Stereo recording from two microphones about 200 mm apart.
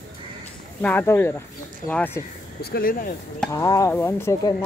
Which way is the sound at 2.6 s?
50° left (ahead or behind).